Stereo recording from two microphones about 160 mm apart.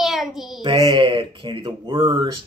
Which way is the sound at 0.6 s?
30° right (ahead or behind).